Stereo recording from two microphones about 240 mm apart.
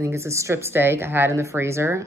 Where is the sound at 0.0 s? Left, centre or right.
Centre.